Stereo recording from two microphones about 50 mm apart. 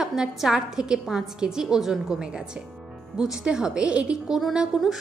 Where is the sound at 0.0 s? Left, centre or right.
Centre.